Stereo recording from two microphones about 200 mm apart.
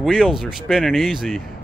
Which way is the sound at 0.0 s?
5° right (ahead or behind).